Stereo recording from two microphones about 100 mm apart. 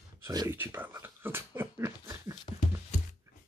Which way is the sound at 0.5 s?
25° right (ahead or behind).